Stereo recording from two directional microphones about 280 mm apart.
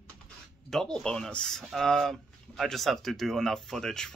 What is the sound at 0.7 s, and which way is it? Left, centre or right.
Speech, centre.